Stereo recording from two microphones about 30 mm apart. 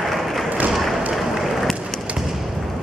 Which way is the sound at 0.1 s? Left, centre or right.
Centre.